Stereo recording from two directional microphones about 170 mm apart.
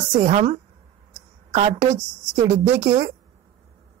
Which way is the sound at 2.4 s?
15° right (ahead or behind).